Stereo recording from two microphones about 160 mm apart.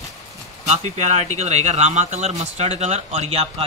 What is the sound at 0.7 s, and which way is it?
Speech, 45° right (ahead or behind).